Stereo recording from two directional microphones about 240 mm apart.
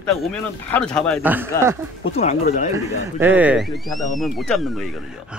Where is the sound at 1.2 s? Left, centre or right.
Centre.